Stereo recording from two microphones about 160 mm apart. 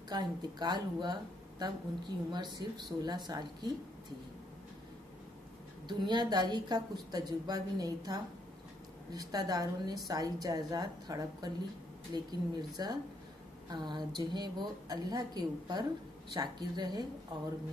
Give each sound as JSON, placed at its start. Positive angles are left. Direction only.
{"t": 0.1, "sound": "speech", "side_deg": -25}
{"t": 5.9, "sound": "speech", "side_deg": -30}